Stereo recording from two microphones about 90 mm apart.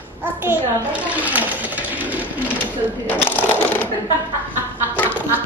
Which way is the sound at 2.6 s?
20° left (ahead or behind).